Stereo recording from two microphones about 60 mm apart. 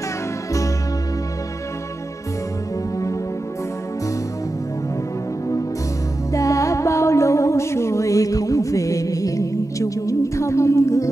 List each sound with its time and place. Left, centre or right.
6.3 s music: left